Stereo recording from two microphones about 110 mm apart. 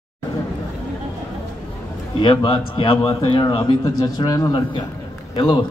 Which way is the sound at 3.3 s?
45° left (ahead or behind).